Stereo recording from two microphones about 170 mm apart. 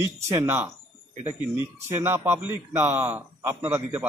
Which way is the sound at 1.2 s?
40° right (ahead or behind).